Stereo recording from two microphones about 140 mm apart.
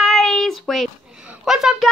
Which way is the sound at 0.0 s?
5° left (ahead or behind).